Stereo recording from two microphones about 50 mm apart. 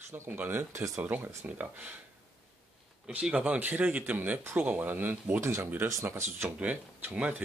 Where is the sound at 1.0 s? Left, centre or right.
Right.